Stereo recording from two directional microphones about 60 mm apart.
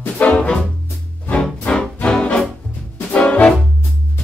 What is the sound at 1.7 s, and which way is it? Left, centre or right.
Music, centre.